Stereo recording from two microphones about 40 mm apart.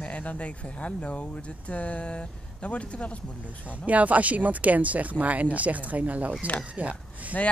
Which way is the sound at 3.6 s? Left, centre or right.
Right.